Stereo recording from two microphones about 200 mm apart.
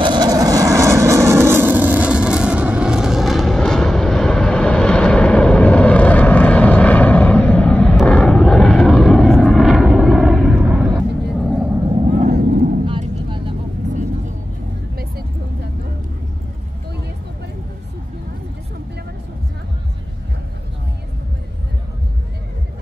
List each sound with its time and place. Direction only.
0.0 s vehicle: 20° right (ahead or behind); by 10.9 s centre (ahead or behind)
11.9 s vehicle: 35° right (ahead or behind)
12.3 s vehicle: 55° right (ahead or behind)
12.8 s vehicle: 25° right (ahead or behind)